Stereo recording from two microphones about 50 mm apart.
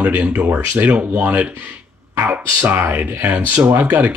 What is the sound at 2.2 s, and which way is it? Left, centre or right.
Speech, right.